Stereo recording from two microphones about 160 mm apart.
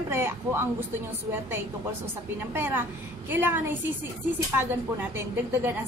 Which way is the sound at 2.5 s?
15° right (ahead or behind).